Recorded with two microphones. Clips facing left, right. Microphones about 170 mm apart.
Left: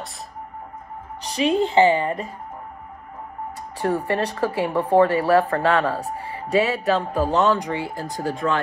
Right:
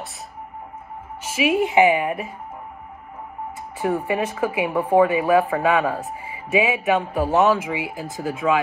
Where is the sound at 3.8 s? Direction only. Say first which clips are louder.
Even; 10° right (ahead or behind).